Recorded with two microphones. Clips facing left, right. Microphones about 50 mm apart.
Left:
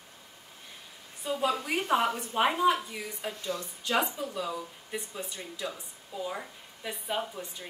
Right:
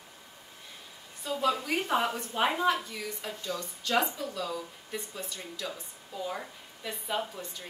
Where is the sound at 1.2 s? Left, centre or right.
Centre.